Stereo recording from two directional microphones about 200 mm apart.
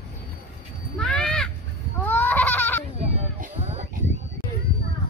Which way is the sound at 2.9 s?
30° right (ahead or behind).